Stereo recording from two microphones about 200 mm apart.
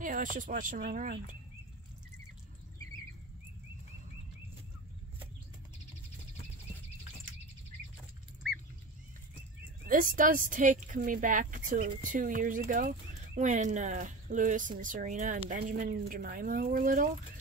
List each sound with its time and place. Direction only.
0.0 s speech: 40° right (ahead or behind)
9.8 s speech: 45° right (ahead or behind)